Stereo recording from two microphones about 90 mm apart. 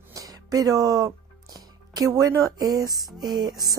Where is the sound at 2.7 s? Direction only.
45° right (ahead or behind).